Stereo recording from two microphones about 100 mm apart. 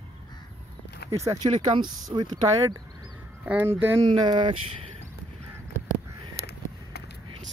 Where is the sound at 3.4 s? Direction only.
20° right (ahead or behind).